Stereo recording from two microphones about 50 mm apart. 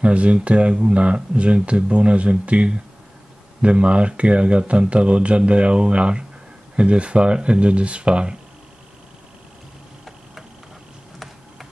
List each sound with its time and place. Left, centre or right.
0.0 s speech: right